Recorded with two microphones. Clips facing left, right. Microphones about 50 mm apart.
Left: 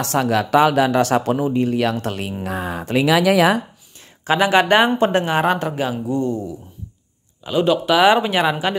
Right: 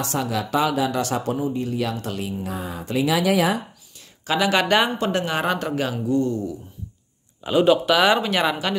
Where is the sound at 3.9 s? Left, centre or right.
Left.